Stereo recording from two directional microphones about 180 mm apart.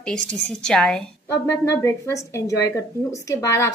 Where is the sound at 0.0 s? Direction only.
5° left (ahead or behind).